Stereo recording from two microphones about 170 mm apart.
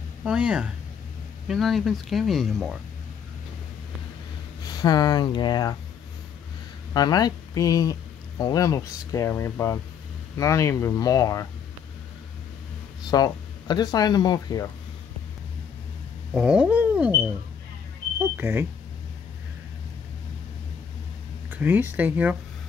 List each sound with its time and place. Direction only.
0.2 s speech: 5° right (ahead or behind)
4.6 s speech: 25° left (ahead or behind)
6.9 s speech: 25° left (ahead or behind)
13.1 s speech: 25° left (ahead or behind)
16.3 s speech: 5° right (ahead or behind)
18.4 s speech: 10° right (ahead or behind)
21.5 s speech: 10° right (ahead or behind)